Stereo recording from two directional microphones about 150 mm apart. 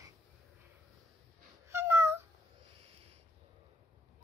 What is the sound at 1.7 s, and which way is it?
Cat, 20° right (ahead or behind).